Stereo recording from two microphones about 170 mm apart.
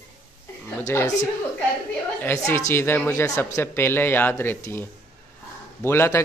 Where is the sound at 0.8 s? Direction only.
20° left (ahead or behind).